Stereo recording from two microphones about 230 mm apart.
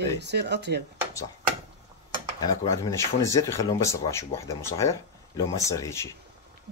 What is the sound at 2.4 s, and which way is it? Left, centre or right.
A man's voice, centre.